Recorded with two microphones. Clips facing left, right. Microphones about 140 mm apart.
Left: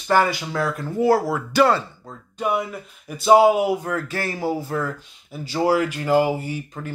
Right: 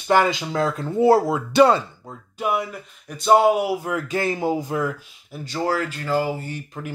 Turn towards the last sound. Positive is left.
turn(degrees=10)  # may be behind; listen again after turning